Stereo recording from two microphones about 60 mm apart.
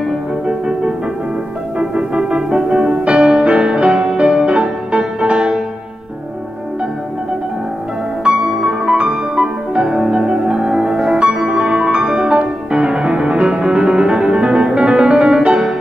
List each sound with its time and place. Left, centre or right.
0.5 s music: centre
8.3 s music: centre